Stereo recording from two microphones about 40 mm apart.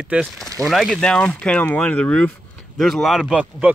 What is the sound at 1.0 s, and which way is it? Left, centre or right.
Speech, centre.